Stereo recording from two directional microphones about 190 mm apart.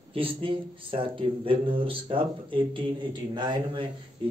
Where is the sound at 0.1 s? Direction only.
30° right (ahead or behind).